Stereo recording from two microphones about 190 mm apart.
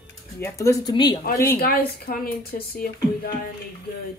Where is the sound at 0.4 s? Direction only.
15° left (ahead or behind).